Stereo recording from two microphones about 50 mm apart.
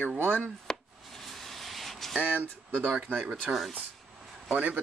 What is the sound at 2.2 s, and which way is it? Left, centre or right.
Speech, right.